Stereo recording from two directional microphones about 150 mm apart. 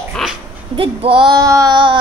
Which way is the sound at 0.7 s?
35° right (ahead or behind).